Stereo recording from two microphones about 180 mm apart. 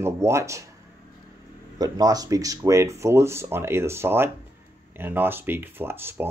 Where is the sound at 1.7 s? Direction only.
20° right (ahead or behind).